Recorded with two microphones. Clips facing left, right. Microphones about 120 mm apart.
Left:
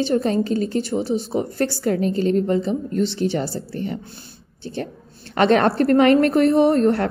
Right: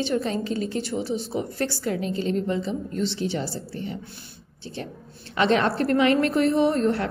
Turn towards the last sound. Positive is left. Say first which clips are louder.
# left 5 dB
turn(degrees=45)  # may be behind; listen again after turning